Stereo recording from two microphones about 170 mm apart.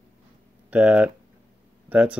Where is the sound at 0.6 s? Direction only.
5° right (ahead or behind).